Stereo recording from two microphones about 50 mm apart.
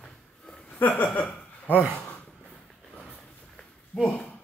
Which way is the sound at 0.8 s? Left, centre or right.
Left.